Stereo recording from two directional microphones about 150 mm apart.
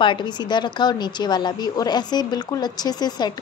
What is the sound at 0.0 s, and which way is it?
A woman's voice, 30° left (ahead or behind).